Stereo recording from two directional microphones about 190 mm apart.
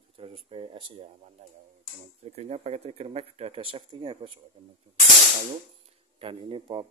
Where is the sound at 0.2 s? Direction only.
30° right (ahead or behind).